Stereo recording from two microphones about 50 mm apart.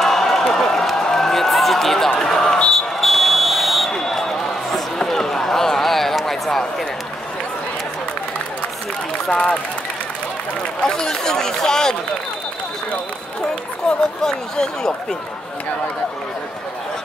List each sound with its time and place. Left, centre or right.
0.0 s a sound: centre
2.7 s buzzer: centre
9.3 s speech: left
10.9 s speech: centre
13.8 s speech: centre